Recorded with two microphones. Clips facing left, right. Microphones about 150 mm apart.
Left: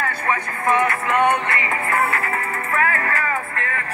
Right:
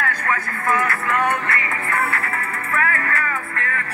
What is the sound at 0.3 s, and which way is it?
Music, 20° left (ahead or behind).